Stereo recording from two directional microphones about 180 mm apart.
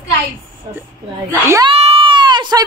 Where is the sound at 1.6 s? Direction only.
30° right (ahead or behind).